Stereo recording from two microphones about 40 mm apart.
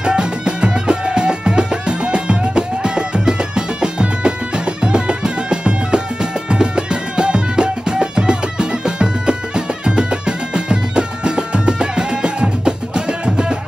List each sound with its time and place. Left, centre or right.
0.0 s music: right